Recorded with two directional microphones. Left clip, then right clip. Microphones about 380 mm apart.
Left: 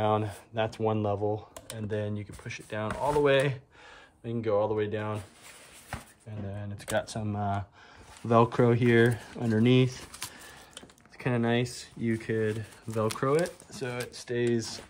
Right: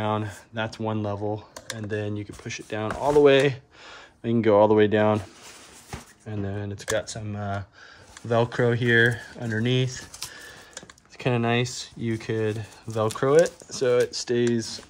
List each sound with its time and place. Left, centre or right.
0.0 s speech: centre
4.2 s speech: centre
6.3 s speech: centre
6.8 s speech: centre
11.1 s speech: centre